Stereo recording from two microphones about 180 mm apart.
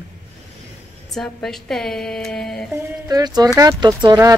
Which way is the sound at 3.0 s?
20° right (ahead or behind).